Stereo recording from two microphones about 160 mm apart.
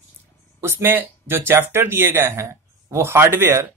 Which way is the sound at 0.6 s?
15° right (ahead or behind).